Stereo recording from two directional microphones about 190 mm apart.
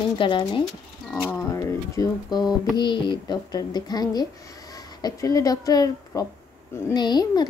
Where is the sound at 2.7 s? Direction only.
25° left (ahead or behind).